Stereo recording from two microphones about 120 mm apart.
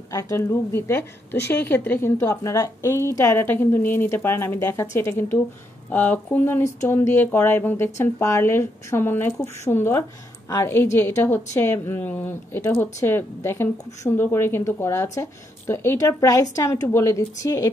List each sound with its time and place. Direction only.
0.1 s a woman's voice: 25° left (ahead or behind)